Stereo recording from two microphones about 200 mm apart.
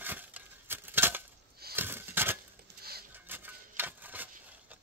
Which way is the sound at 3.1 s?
10° right (ahead or behind).